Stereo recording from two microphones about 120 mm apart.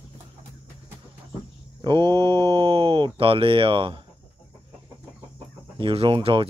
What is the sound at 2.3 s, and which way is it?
Speech, 40° right (ahead or behind).